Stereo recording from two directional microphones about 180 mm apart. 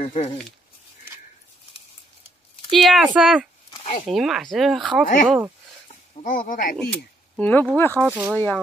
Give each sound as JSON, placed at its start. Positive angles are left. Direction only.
{"t": 0.0, "sound": "speech", "side_deg": 35}
{"t": 2.7, "sound": "speech", "side_deg": 0}
{"t": 3.7, "sound": "a sound", "side_deg": 40}
{"t": 4.1, "sound": "speech", "side_deg": 0}
{"t": 5.0, "sound": "speech", "side_deg": 45}
{"t": 6.8, "sound": "speech", "side_deg": 10}
{"t": 7.9, "sound": "speech", "side_deg": -10}